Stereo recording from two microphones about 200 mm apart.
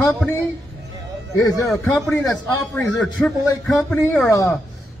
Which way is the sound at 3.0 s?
Centre (ahead or behind).